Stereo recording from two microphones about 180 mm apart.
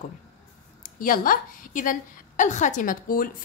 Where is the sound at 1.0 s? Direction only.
50° left (ahead or behind).